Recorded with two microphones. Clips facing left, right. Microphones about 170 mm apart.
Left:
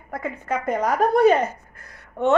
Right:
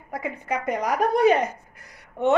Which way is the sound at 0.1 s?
15° right (ahead or behind).